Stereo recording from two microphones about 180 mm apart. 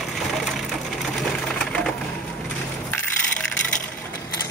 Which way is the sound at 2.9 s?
5° left (ahead or behind).